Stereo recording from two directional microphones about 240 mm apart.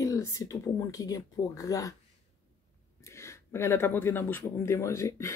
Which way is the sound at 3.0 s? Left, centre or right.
Centre.